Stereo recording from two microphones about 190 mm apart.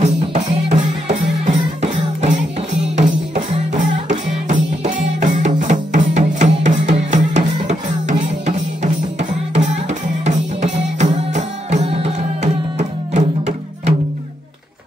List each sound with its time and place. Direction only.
0.0 s music: 35° right (ahead or behind)